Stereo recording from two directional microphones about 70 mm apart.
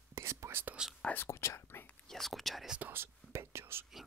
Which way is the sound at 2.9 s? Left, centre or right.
Right.